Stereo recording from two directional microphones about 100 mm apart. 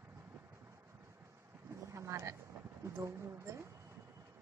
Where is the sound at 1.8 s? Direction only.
30° right (ahead or behind).